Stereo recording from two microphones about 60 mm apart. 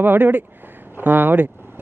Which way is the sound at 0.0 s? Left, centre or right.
Right.